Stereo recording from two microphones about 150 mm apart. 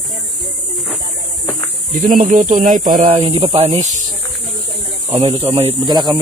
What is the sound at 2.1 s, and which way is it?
Speech, 60° right (ahead or behind).